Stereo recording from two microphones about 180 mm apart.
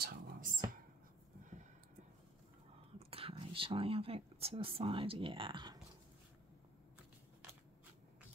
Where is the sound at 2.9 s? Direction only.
30° right (ahead or behind).